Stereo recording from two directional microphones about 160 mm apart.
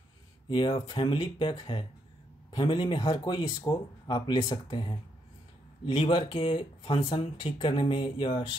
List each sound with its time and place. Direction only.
0.5 s speech: 30° left (ahead or behind)